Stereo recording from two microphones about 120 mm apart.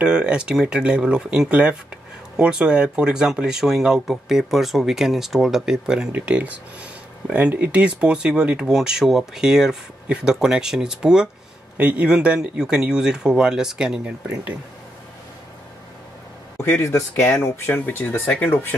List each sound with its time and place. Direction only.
0.0 s speech: 5° right (ahead or behind)
16.8 s speech: 25° left (ahead or behind)